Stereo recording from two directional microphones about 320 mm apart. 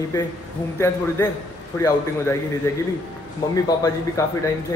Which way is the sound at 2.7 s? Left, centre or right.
Centre.